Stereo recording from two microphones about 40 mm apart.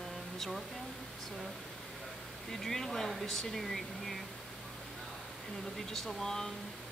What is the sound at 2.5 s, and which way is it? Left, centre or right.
Speech, centre.